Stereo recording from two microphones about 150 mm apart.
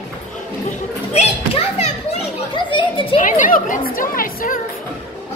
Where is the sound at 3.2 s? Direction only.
60° left (ahead or behind).